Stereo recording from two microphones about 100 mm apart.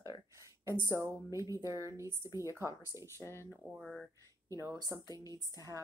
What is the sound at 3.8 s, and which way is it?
Speech, centre (ahead or behind).